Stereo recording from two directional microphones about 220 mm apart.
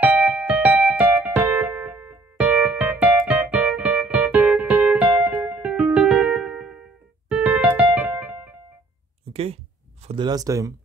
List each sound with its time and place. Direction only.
0.0 s music: 5° right (ahead or behind)
9.3 s a sound: 25° right (ahead or behind)
10.0 s speech: 20° right (ahead or behind)